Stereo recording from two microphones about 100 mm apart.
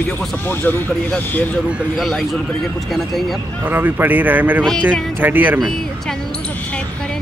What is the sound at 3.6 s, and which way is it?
Speech, 20° right (ahead or behind).